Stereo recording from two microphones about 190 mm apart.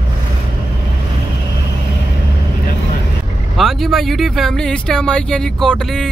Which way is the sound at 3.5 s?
Centre (ahead or behind).